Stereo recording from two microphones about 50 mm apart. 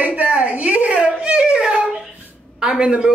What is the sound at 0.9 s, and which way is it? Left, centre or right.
A man's voice, centre.